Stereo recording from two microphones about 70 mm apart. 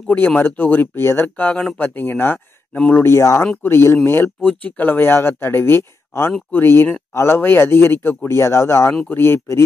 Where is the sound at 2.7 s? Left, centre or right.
Centre.